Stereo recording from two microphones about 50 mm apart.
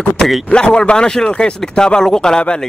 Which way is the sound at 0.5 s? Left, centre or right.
Centre.